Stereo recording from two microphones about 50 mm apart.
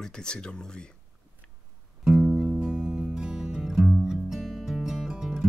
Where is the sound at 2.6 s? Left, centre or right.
Centre.